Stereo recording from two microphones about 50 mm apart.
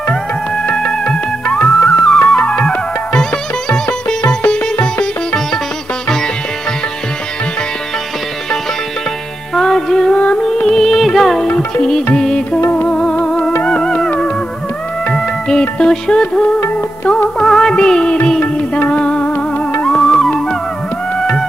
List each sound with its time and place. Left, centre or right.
0.8 s music: left
1.7 s music: centre
2.3 s music: centre
3.7 s music: centre
9.6 s music: centre
10.1 s music: left
10.4 s music: centre
15.9 s music: centre
19.9 s music: centre